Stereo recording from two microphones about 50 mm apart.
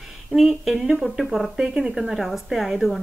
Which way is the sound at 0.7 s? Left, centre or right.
Centre.